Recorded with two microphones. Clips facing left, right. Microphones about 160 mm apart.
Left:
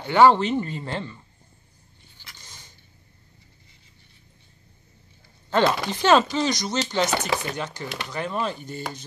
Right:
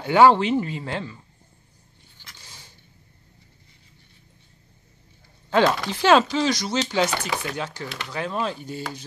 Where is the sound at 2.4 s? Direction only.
5° right (ahead or behind).